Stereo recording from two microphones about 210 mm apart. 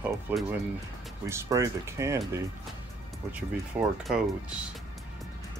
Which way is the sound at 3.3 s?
5° right (ahead or behind).